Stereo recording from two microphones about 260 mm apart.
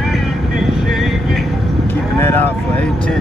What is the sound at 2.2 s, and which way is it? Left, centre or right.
Speech, centre.